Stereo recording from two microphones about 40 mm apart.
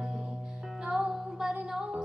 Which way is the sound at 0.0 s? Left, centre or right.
Right.